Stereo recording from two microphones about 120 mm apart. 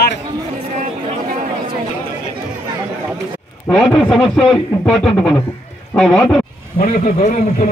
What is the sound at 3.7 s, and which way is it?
Speech, centre (ahead or behind).